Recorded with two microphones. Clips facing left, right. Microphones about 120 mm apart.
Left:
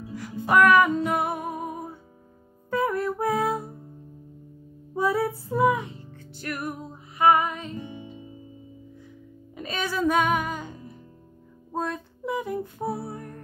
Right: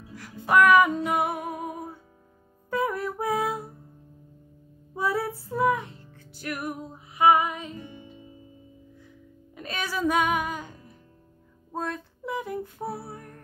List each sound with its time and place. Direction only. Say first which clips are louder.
0.1 s music: left 1 dB; centre (ahead or behind)
4.9 s music: left 3 dB; centre (ahead or behind)
6.3 s music: even; 10° right (ahead or behind)
7.8 s music: left 5 dB; 20° left (ahead or behind)
9.6 s speech: left 2 dB; 5° right (ahead or behind)
11.7 s music: left 2 dB; centre (ahead or behind)